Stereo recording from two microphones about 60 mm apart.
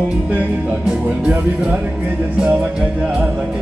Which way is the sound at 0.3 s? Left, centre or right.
Right.